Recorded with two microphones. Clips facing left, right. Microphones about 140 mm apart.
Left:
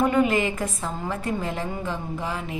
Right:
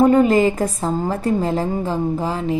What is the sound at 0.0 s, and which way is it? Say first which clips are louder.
A woman's voice: right 8 dB; 35° right (ahead or behind).